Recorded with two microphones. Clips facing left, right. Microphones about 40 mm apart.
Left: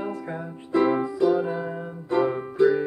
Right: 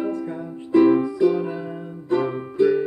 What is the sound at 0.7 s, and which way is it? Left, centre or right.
Music, centre.